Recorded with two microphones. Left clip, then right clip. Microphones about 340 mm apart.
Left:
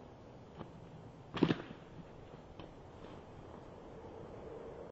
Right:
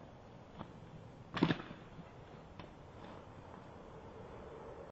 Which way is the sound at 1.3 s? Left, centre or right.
Right.